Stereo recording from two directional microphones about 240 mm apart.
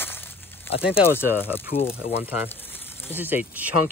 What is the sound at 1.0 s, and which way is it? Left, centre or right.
Speech, centre.